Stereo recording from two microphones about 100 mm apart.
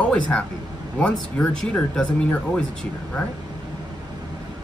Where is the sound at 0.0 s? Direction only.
10° left (ahead or behind).